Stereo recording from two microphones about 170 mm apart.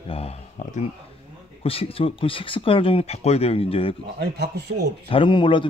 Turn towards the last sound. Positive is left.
turn(degrees=30)  # may be behind; listen again after turning